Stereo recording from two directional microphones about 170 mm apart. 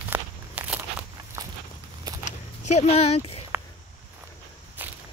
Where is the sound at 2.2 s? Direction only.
40° left (ahead or behind).